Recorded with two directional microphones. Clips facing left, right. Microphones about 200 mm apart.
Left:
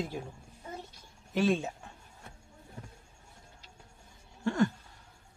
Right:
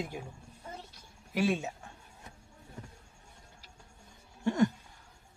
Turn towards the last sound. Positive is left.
turn(degrees=-20)  # may be behind; listen again after turning